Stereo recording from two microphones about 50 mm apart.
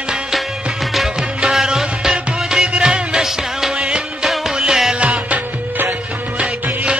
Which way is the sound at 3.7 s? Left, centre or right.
Centre.